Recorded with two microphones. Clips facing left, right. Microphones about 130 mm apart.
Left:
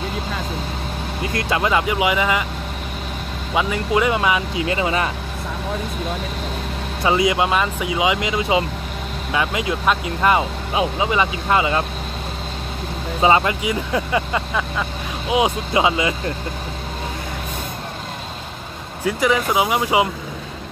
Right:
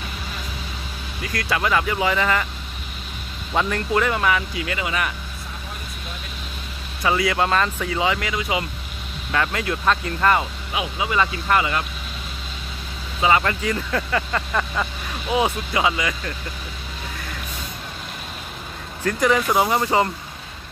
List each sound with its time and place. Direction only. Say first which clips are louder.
1.2 s speech: left 3 dB; 25° left (ahead or behind)
3.5 s speech: left 2 dB; 10° left (ahead or behind); by 5.1 s 30° left (ahead or behind)
7.0 s speech: left 3 dB; 20° left (ahead or behind)
9.3 s speech: left 2 dB; 15° left (ahead or behind)
10.7 s speech: left 6 dB; 30° left (ahead or behind)
11.1 s speech: even; 20° left (ahead or behind)
13.2 s speech: left 3 dB; 20° left (ahead or behind)
14.5 s speech: left 1 dB; 5° left (ahead or behind)
15.3 s speech: left 3 dB; 20° left (ahead or behind)
19.0 s speech: left 1 dB; 5° left (ahead or behind)